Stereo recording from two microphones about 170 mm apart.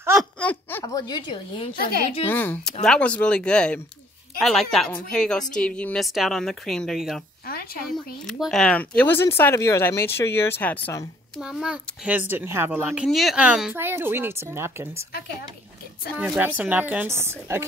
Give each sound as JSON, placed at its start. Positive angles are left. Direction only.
{"t": 0.2, "sound": "speech", "side_deg": 10}
{"t": 1.8, "sound": "a woman's voice", "side_deg": 65}
{"t": 2.2, "sound": "a woman's voice", "side_deg": 10}
{"t": 7.4, "sound": "a sound", "side_deg": 60}
{"t": 7.9, "sound": "speech", "side_deg": 0}
{"t": 11.4, "sound": "a child's voice", "side_deg": -5}
{"t": 16.2, "sound": "a child's voice", "side_deg": -10}